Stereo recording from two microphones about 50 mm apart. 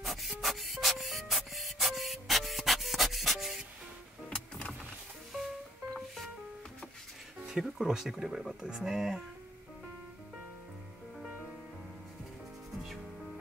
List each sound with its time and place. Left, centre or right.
0.0 s music: centre
4.3 s music: centre
5.9 s music: centre
7.4 s music: centre
7.7 s speech: centre
12.7 s music: centre